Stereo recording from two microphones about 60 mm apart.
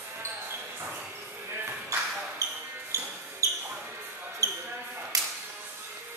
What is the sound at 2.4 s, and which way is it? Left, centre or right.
Basketball bounce, right.